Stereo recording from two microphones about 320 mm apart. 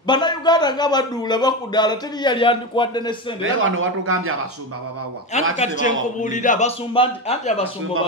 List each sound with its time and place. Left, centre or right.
0.0 s a man's voice: centre
3.4 s a man's voice: right
5.6 s a man's voice: left